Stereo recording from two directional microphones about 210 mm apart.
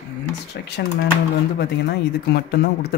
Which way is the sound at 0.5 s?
55° left (ahead or behind).